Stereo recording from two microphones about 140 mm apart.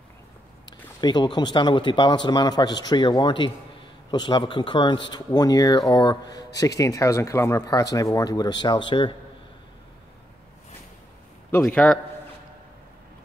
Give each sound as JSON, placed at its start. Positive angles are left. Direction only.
{"t": 1.0, "sound": "a man's voice", "side_deg": 30}
{"t": 11.6, "sound": "a man's voice", "side_deg": 10}